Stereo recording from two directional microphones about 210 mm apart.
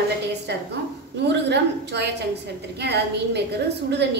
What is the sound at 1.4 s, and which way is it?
A woman's voice, 55° right (ahead or behind).